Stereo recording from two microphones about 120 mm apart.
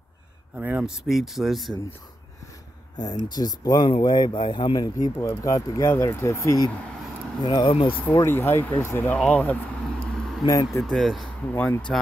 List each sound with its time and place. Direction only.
0.6 s speech: 15° right (ahead or behind)
1.0 s speech: 5° right (ahead or behind)
3.0 s speech: 35° left (ahead or behind)
7.4 s speech: 40° left (ahead or behind)
8.1 s speech: 20° left (ahead or behind)
9.2 s vehicle: 10° left (ahead or behind)
10.4 s speech: 30° left (ahead or behind)
10.8 s speech: centre (ahead or behind)
11.5 s speech: 15° left (ahead or behind)